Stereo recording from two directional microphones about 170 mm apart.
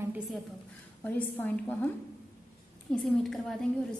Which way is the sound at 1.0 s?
10° left (ahead or behind).